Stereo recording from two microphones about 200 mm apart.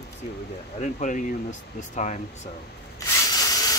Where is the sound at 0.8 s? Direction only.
40° left (ahead or behind).